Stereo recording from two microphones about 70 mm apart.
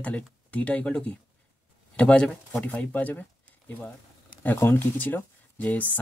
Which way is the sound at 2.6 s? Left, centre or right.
Left.